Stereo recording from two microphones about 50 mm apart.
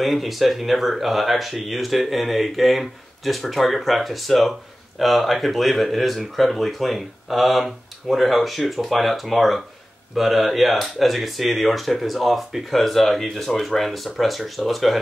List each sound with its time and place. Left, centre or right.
0.0 s speech: centre